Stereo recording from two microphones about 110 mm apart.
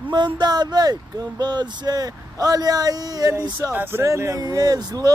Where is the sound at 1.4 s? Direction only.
40° right (ahead or behind).